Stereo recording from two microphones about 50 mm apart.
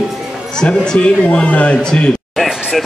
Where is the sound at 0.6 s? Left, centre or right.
Centre.